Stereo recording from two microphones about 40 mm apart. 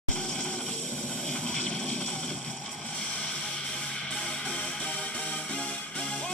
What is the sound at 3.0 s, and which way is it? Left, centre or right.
Music, left.